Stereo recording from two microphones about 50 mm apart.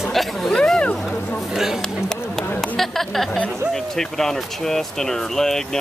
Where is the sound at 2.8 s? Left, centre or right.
Centre.